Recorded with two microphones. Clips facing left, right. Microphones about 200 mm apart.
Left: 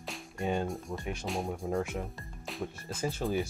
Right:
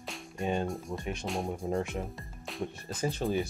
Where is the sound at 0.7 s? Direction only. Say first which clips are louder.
Right 1 dB; centre (ahead or behind).